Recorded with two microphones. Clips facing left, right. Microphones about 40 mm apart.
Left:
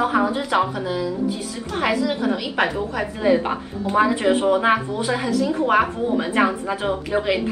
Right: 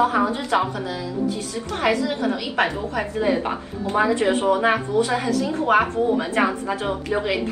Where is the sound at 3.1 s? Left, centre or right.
Centre.